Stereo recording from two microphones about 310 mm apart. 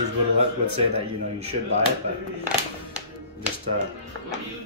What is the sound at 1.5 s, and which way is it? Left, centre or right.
Speech, right.